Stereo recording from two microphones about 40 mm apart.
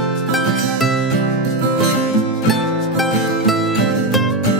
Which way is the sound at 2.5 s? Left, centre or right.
Centre.